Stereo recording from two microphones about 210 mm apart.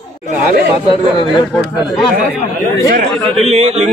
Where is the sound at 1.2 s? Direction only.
20° left (ahead or behind).